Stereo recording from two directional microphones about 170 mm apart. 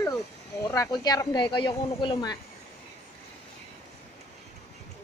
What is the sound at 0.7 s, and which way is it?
Speech, 20° left (ahead or behind).